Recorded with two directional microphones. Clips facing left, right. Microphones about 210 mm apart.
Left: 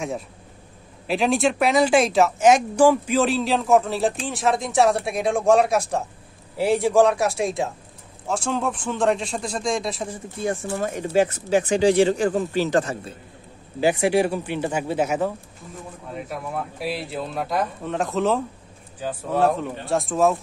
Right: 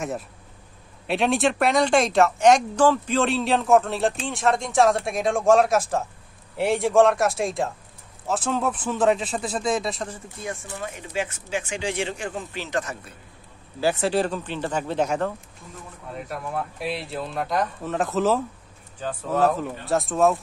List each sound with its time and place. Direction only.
1.0 s speech: centre (ahead or behind)
10.8 s speech: 40° left (ahead or behind)
13.7 s speech: 15° left (ahead or behind); by 18.4 s centre (ahead or behind)
18.9 s speech: 10° left (ahead or behind)